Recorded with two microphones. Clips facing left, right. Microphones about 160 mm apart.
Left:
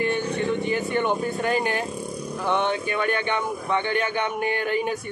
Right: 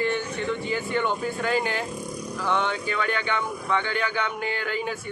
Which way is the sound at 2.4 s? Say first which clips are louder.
Left 2 dB; 20° left (ahead or behind).